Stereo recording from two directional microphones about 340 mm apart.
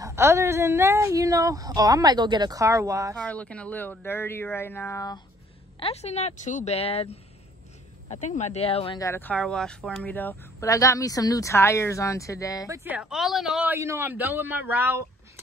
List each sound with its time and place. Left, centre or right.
0.0 s a woman's voice: centre
3.2 s a woman's voice: centre
12.6 s speech: centre